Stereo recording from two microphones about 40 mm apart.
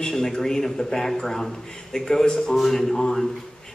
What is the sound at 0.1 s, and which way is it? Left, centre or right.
A man's voice, centre.